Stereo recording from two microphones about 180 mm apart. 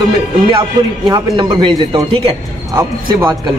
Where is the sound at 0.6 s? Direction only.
25° right (ahead or behind).